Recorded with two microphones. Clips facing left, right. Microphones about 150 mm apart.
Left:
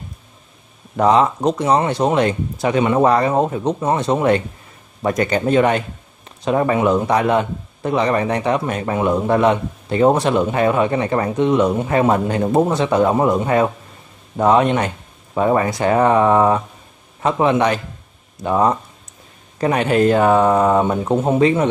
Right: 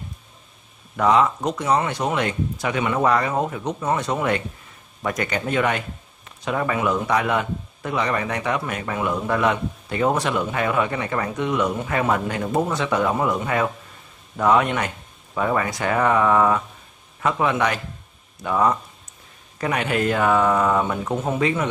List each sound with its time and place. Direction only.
0.9 s a man's voice: 35° left (ahead or behind)